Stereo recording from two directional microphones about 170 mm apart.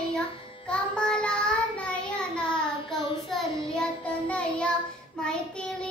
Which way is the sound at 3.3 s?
5° left (ahead or behind).